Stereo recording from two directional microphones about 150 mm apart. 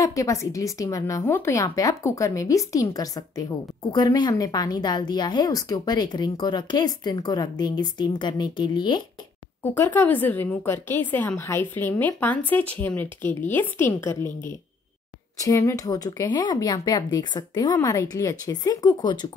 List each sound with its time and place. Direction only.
0.0 s a woman's voice: 20° left (ahead or behind)
9.6 s a woman's voice: 10° left (ahead or behind)
15.4 s a woman's voice: 20° left (ahead or behind)